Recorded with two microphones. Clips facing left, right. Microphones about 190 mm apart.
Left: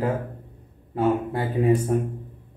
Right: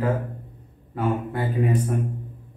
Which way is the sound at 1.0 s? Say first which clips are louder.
Left 3 dB; 25° left (ahead or behind).